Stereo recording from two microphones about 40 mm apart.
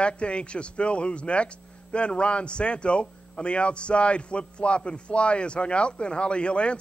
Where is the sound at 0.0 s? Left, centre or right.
Left.